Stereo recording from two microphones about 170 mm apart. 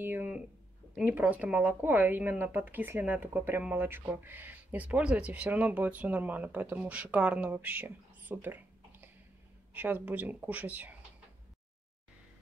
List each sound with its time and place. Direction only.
0.0 s speech: 10° right (ahead or behind)